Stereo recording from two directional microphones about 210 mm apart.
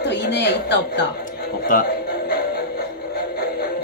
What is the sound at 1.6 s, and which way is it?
Music, 45° left (ahead or behind).